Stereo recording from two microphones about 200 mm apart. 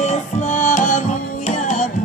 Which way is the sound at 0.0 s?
35° left (ahead or behind).